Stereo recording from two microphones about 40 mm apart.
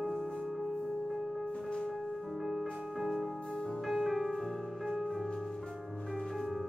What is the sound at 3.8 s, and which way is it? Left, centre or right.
Music, centre.